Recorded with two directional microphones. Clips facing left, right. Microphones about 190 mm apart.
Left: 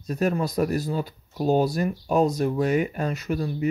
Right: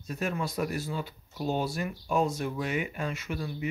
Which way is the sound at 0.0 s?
40° left (ahead or behind).